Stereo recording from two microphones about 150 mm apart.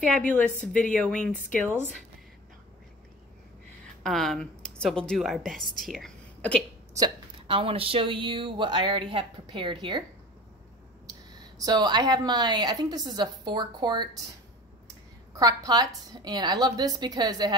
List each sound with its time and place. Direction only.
0.7 s speech: 10° left (ahead or behind)
4.0 s a woman's voice: centre (ahead or behind)
7.3 s speech: 35° right (ahead or behind)
11.5 s a woman's voice: 25° right (ahead or behind)
15.3 s a woman's voice: 25° right (ahead or behind)